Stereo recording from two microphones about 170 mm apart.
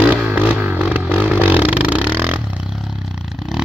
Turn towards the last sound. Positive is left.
turn(degrees=0)  # may be behind; listen again after turning